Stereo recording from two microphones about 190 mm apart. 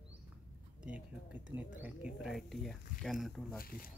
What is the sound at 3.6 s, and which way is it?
Speech, 50° left (ahead or behind).